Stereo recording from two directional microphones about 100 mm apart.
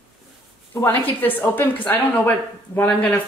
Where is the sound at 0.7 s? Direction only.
20° left (ahead or behind).